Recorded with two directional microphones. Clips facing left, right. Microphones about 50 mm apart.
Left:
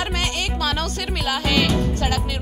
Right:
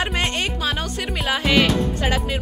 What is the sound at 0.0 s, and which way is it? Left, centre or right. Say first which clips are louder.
Music: right 2 dB; right.